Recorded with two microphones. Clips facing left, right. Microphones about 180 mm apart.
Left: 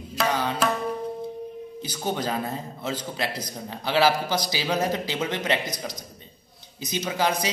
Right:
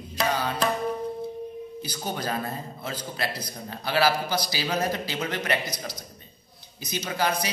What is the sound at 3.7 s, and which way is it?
A man's voice, 15° left (ahead or behind).